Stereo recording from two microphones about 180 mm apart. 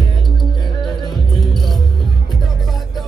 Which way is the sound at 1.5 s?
Centre (ahead or behind).